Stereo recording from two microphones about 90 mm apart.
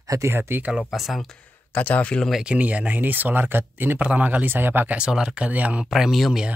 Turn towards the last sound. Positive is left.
turn(degrees=-5)  # may be behind; listen again after turning